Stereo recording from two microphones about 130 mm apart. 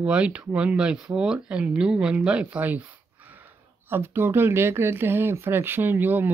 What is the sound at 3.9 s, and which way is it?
Speech, 20° right (ahead or behind).